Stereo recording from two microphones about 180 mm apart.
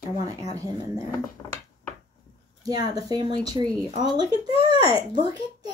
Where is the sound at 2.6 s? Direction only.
20° right (ahead or behind).